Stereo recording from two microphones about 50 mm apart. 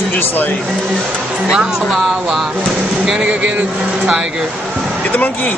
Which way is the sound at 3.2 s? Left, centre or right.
Right.